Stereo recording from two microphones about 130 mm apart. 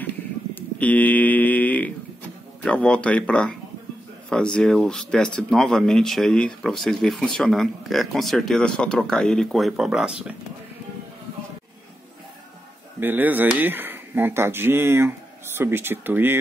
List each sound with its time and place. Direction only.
0.6 s a sound: 10° left (ahead or behind)
2.6 s speech: 10° left (ahead or behind)
13.0 s speech: 15° right (ahead or behind)